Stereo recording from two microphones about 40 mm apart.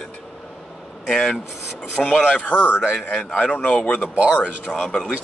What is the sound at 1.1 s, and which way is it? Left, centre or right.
Speech, centre.